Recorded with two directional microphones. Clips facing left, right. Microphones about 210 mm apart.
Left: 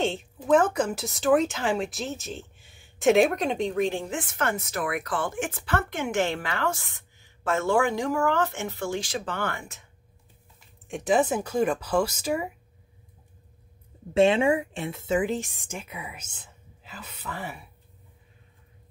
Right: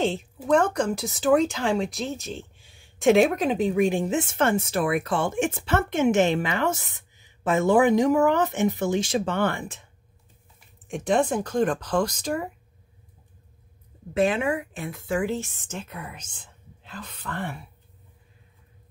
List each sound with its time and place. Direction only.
0.0 s speech: centre (ahead or behind); by 9.8 s 30° right (ahead or behind)
10.9 s speech: centre (ahead or behind)
14.1 s speech: 25° left (ahead or behind); by 17.6 s 5° left (ahead or behind)